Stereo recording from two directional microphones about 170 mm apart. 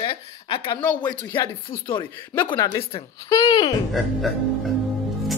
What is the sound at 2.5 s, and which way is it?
Speech, 20° left (ahead or behind).